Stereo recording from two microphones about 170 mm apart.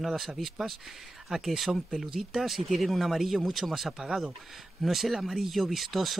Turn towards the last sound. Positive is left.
turn(degrees=0)  # may be behind; listen again after turning